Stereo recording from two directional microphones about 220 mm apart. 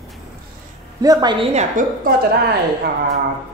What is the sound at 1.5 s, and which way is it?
Speech, 35° right (ahead or behind).